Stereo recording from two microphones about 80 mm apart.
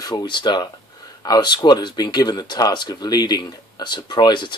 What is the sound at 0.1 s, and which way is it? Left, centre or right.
Speech, left.